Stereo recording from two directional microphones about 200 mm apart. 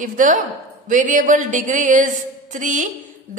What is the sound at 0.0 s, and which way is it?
A woman's voice, 40° right (ahead or behind).